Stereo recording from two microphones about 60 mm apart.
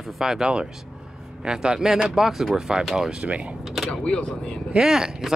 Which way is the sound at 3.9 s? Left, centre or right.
Centre.